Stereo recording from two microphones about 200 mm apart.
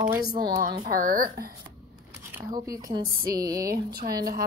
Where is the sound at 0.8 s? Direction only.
45° right (ahead or behind).